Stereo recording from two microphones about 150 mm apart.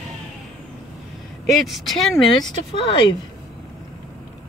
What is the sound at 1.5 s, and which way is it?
Speech, centre (ahead or behind).